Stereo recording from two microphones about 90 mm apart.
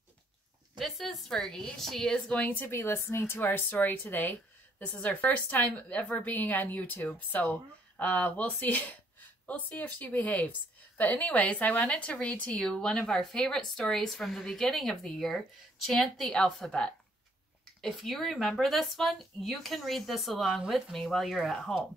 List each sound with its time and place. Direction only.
0.7 s speech: centre (ahead or behind); by 2.6 s 15° left (ahead or behind)
2.6 s a woman's voice: 30° left (ahead or behind); by 21.7 s 5° left (ahead or behind)